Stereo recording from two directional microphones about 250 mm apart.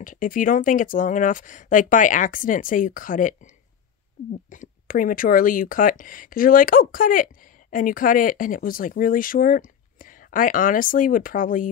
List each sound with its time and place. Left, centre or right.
0.0 s speech: left
4.5 s speech: left